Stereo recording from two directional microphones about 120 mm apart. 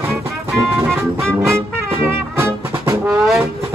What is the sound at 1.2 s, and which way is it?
Music, 20° right (ahead or behind).